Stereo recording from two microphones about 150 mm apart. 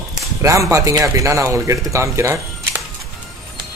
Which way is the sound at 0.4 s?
20° right (ahead or behind).